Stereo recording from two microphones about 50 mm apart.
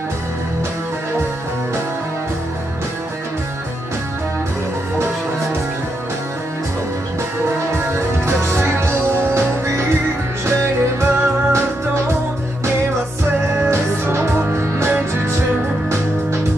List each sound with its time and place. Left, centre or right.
7.5 s music: right
14.1 s music: right